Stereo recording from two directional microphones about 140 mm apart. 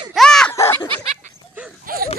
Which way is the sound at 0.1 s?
5° left (ahead or behind).